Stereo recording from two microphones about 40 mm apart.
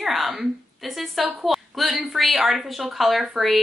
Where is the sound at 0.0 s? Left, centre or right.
Centre.